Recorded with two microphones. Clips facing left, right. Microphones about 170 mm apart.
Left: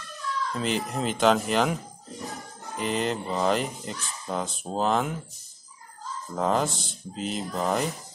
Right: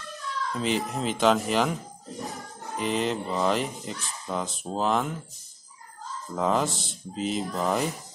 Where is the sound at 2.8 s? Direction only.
Centre (ahead or behind).